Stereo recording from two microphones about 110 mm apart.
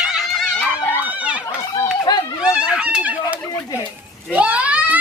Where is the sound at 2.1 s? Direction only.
40° left (ahead or behind).